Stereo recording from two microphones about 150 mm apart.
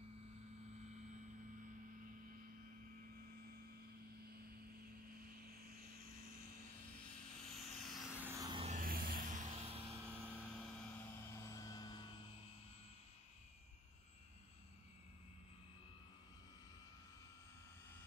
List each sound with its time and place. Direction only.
7.5 s vehicle: centre (ahead or behind)
8.4 s vehicle: 30° right (ahead or behind)
8.6 s vehicle: 65° right (ahead or behind); by 10.0 s 40° right (ahead or behind)
10.0 s vehicle: 15° right (ahead or behind)
10.5 s vehicle: 10° left (ahead or behind); by 12.1 s 25° left (ahead or behind)